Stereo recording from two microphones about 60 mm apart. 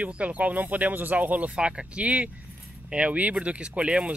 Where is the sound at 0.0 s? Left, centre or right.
Right.